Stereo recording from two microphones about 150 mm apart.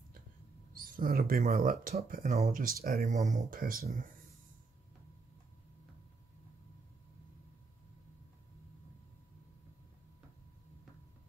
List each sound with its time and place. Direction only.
0.7 s speech: 75° right (ahead or behind)